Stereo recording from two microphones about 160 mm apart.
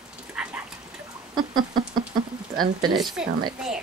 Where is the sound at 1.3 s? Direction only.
25° right (ahead or behind).